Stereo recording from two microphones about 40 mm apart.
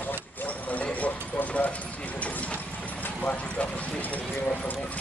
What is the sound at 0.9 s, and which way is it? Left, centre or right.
Vehicle, left.